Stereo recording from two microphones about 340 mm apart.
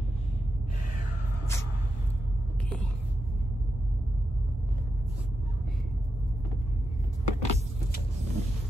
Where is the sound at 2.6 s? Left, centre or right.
Centre.